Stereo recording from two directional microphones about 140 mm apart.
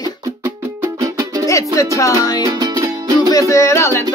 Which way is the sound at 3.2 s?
25° left (ahead or behind).